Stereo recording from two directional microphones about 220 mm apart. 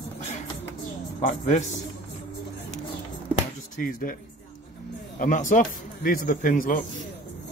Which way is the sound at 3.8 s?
40° left (ahead or behind).